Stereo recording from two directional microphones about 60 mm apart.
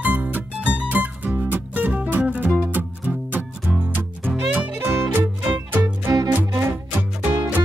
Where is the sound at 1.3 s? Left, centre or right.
Right.